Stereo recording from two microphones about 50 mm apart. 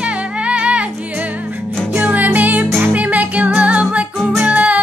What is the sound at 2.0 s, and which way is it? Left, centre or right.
Music, right.